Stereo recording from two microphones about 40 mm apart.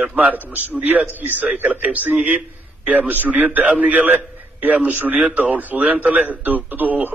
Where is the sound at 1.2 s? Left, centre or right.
Right.